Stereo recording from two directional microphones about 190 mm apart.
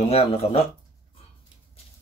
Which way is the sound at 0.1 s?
30° left (ahead or behind).